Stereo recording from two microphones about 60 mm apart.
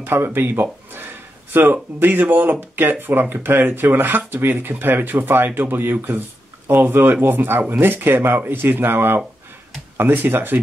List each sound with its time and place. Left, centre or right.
0.0 s speech: right